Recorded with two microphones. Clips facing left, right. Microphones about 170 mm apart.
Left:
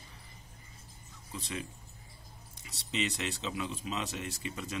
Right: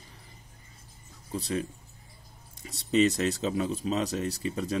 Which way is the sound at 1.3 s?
40° right (ahead or behind).